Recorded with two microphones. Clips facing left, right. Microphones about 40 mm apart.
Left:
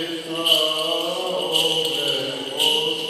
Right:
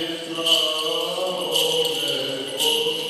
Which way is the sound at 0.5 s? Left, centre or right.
Centre.